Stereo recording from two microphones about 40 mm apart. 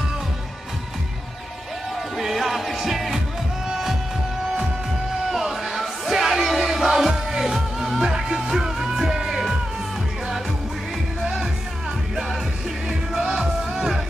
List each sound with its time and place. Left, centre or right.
2.1 s music: centre
5.3 s a sound: centre
6.4 s music: centre
13.1 s music: centre